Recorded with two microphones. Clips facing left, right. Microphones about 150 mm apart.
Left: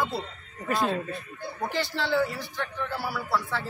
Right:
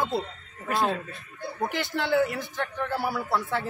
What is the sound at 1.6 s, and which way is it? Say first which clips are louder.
A man's voice: right 1 dB; 55° right (ahead or behind).